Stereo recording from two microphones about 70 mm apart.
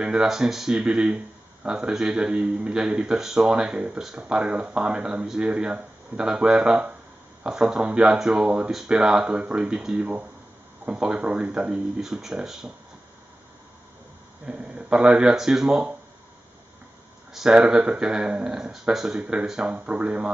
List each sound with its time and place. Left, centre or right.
0.0 s speech: centre
12.0 s speech: centre
14.4 s speech: centre
17.3 s speech: centre